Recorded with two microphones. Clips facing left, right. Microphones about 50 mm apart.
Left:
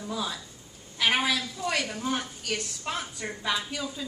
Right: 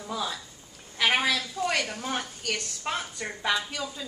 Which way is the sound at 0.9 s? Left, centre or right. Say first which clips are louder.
Right 1 dB; centre.